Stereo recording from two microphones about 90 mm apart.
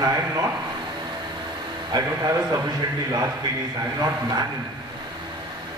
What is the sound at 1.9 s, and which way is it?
Speech, 45° right (ahead or behind).